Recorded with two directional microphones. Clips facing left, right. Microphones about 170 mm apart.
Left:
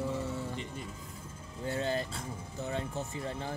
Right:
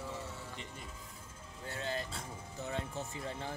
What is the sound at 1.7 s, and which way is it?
Speech, 30° left (ahead or behind).